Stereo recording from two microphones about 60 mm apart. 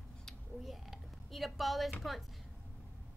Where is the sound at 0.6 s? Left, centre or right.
Centre.